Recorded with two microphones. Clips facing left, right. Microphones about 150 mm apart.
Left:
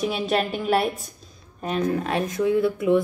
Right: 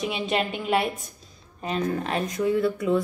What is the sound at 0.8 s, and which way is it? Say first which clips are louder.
Speech: left 2 dB; centre (ahead or behind).